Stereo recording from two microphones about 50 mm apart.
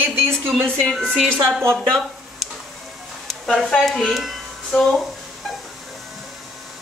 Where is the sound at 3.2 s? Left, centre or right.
Centre.